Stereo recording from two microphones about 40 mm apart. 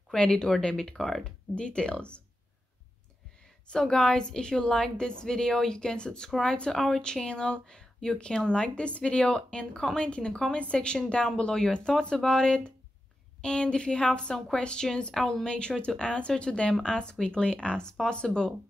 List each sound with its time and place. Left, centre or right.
0.1 s speech: centre
0.8 s a woman's voice: centre
1.5 s speech: left
3.8 s a woman's voice: centre
6.7 s a woman's voice: centre
7.0 s speech: left